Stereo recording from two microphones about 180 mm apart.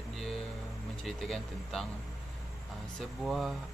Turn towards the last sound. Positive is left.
turn(degrees=0)  # may be behind; listen again after turning